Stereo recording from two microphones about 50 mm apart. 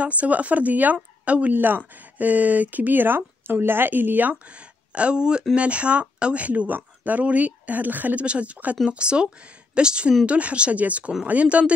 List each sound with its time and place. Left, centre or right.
0.0 s speech: right